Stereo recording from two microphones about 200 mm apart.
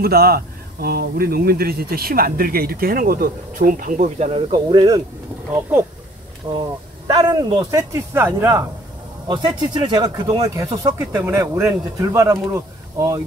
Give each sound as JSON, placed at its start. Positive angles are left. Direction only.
{"t": 0.0, "sound": "speech", "side_deg": -50}
{"t": 6.4, "sound": "speech", "side_deg": -30}